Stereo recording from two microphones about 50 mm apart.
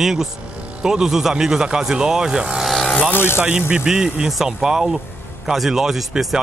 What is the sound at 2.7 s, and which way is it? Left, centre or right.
Vehicle, centre.